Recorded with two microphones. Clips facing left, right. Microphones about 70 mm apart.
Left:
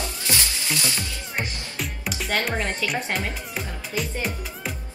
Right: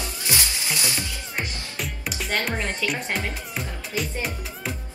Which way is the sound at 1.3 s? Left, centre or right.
Centre.